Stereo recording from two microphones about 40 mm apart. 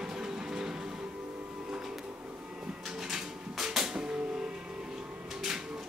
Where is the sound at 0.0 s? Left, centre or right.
Centre.